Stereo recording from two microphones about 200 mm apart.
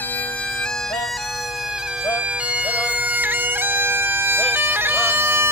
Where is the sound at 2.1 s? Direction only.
5° right (ahead or behind).